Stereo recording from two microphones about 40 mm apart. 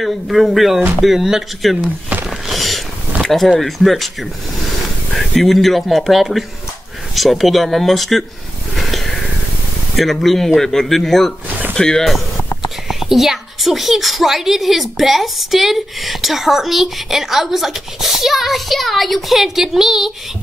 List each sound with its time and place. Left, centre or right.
0.0 s a woman's voice: centre
1.8 s speech: right
2.2 s a sound: centre
3.5 s a woman's voice: centre
8.7 s a sound: centre
9.9 s a man's voice: centre
12.8 s a woman's voice: centre